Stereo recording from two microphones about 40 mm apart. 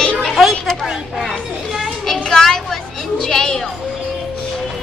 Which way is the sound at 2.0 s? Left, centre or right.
Centre.